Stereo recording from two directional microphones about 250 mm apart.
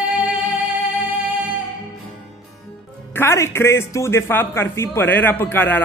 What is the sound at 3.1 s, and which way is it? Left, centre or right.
A man's voice, centre.